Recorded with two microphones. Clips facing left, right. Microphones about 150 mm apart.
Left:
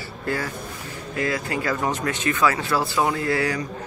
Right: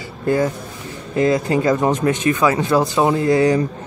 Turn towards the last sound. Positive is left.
turn(degrees=-20)  # may be behind; listen again after turning